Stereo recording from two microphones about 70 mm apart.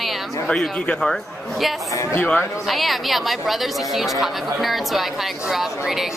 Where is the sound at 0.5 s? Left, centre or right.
Centre.